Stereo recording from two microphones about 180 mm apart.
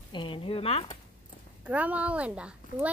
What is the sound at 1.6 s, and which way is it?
A woman's voice, 10° right (ahead or behind).